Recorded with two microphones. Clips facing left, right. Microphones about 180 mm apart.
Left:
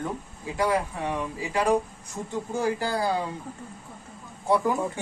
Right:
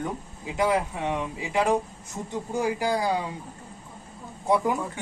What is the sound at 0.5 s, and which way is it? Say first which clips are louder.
Speech: right 1 dB; 20° right (ahead or behind).